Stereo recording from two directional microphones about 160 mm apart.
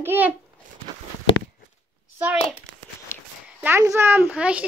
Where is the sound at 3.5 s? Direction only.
10° right (ahead or behind).